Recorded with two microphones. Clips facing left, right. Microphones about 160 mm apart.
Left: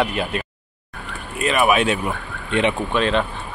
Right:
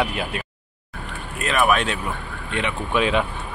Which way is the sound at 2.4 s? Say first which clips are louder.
Left 7 dB; 25° left (ahead or behind).